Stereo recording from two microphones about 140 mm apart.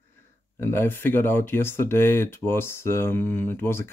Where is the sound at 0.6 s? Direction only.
15° left (ahead or behind).